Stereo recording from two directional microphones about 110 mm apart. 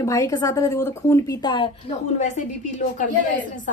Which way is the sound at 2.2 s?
90° left.